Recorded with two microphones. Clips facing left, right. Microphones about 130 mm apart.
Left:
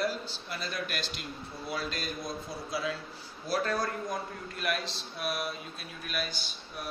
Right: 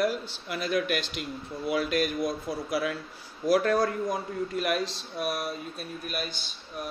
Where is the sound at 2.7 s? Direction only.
25° left (ahead or behind).